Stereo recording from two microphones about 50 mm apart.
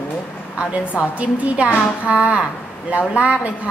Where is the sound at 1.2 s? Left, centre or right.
Right.